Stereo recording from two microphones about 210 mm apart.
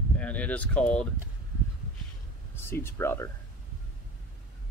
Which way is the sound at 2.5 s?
10° left (ahead or behind).